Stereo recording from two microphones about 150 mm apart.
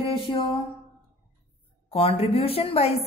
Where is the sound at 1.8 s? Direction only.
40° left (ahead or behind).